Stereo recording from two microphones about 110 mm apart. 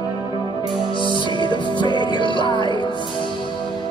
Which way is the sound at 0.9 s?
50° left (ahead or behind).